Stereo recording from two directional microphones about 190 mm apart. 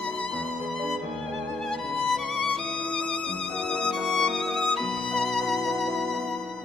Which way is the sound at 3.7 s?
5° left (ahead or behind).